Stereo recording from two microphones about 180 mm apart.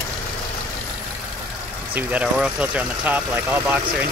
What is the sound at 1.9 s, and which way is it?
Speech, 10° right (ahead or behind).